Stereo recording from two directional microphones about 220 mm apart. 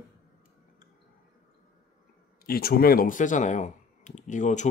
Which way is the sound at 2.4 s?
45° left (ahead or behind).